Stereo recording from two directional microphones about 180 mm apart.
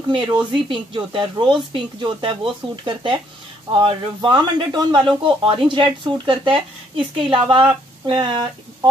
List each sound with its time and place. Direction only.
0.1 s speech: 25° right (ahead or behind)